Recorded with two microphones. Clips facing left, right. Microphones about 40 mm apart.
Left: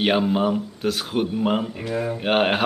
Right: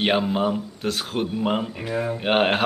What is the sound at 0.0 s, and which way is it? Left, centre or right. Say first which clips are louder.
Speech: left 1 dB; centre.